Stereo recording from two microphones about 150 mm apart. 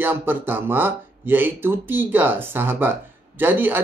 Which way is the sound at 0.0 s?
15° right (ahead or behind).